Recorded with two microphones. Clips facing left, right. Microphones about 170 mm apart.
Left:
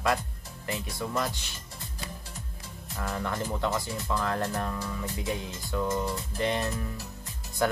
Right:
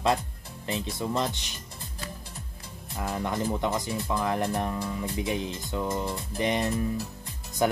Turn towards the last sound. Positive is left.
turn(degrees=-15)  # may be behind; listen again after turning